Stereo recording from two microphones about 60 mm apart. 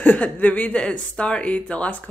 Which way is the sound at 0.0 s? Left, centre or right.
Left.